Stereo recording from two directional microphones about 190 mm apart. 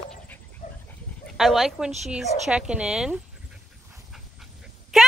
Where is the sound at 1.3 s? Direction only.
Centre (ahead or behind).